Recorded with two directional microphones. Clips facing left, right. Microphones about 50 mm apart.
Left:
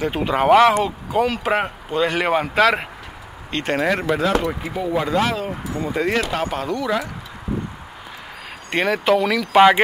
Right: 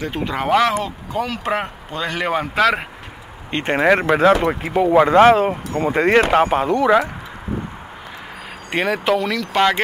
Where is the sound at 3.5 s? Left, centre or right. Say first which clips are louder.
Right 4 dB; right.